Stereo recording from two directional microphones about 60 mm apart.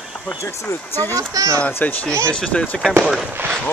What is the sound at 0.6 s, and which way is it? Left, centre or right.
Speech, left.